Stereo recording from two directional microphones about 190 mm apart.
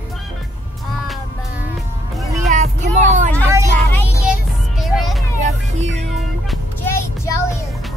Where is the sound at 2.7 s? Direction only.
40° right (ahead or behind).